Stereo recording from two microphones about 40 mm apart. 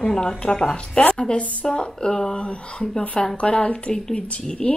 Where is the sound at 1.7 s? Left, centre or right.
Left.